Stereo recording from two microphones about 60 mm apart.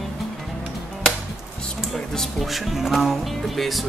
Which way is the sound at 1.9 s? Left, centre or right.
Centre.